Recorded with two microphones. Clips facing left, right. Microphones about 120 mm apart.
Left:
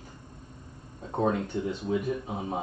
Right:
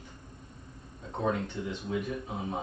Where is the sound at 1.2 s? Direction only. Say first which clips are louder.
Left 4 dB; 40° left (ahead or behind).